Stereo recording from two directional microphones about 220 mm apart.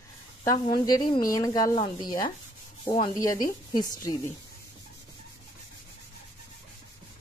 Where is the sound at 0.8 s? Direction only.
15° left (ahead or behind).